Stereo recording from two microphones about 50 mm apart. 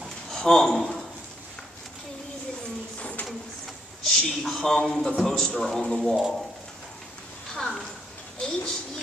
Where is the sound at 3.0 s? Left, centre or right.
Left.